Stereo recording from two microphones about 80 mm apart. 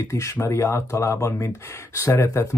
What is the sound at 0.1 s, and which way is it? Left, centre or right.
Speech, left.